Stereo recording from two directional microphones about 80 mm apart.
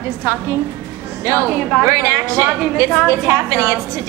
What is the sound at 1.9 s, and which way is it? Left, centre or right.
A woman's voice, right.